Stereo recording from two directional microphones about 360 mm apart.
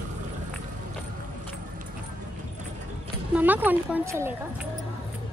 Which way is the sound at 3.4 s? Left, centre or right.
Centre.